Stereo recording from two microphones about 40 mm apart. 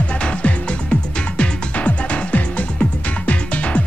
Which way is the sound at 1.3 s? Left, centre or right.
Left.